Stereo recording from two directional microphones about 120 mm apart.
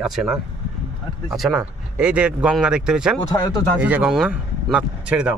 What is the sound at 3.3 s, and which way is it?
Speech, 30° left (ahead or behind).